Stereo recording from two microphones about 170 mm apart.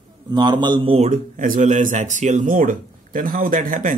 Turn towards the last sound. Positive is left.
turn(degrees=-50)  # may be behind; listen again after turning